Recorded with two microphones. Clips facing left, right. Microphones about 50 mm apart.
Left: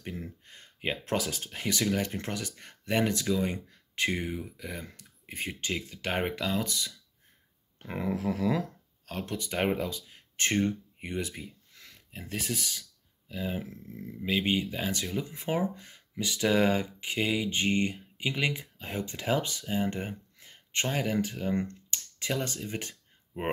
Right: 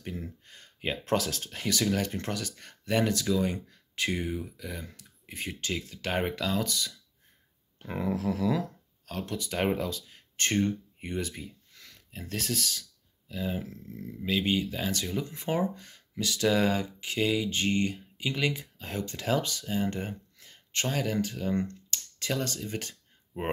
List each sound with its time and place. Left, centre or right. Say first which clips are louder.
0.0 s a sound: right 1 dB; left
1.1 s speech: right 5 dB; centre
4.6 s speech: even; left